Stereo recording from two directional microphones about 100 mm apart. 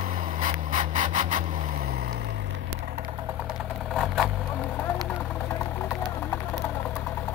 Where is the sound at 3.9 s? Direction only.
5° left (ahead or behind).